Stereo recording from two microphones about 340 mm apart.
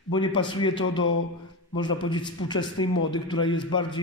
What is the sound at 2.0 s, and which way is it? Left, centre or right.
A man's voice, centre.